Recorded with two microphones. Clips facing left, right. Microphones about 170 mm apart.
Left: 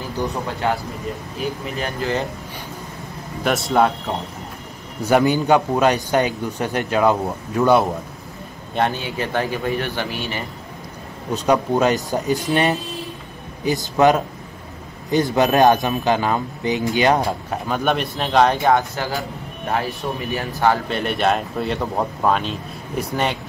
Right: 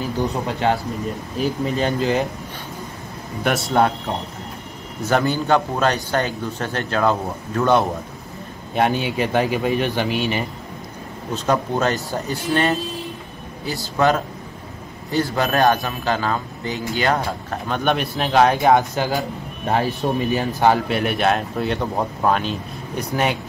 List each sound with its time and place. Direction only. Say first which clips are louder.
1.8 s speech: right 3 dB; 20° right (ahead or behind)
3.4 s speech: left 1 dB; centre (ahead or behind)
5.0 s a man's voice: left 3 dB; 15° left (ahead or behind)
8.7 s speech: right 2 dB; 15° right (ahead or behind)
11.3 s a man's voice: left 3 dB; 15° left (ahead or behind)
17.6 s speech: even; 5° left (ahead or behind)
18.7 s speech: right 2 dB; 20° right (ahead or behind)
20.0 s speech: right 5 dB; 30° right (ahead or behind)
20.3 s speech: even; 20° right (ahead or behind)
20.9 s speech: right 1 dB; 5° right (ahead or behind)